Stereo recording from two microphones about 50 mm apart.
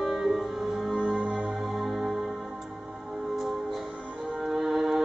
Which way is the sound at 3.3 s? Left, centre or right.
Centre.